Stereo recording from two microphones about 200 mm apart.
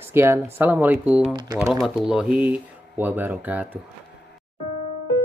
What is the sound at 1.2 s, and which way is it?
Speech, 20° right (ahead or behind).